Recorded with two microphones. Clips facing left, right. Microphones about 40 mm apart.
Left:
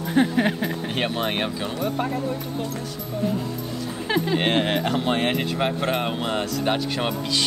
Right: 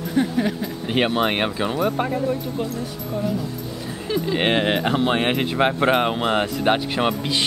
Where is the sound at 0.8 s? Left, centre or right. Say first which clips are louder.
Right 8 dB; right.